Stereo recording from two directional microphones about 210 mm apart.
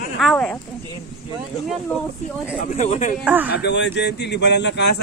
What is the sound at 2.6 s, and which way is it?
Speech, 35° left (ahead or behind).